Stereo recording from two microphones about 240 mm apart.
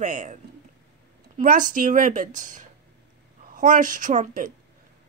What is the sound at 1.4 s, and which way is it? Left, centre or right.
Speech, right.